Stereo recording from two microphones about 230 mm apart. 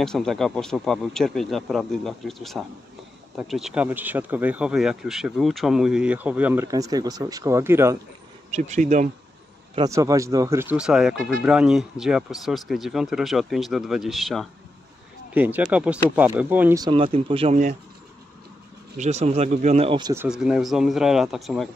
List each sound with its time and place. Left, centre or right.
0.0 s speech: centre
8.5 s speech: right
9.8 s speech: centre; by 17.7 s right
18.9 s speech: right
20.2 s speech: centre